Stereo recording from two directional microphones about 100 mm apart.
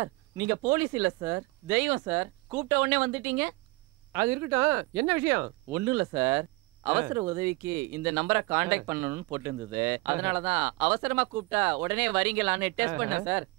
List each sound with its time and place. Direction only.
0.0 s speech: 30° right (ahead or behind)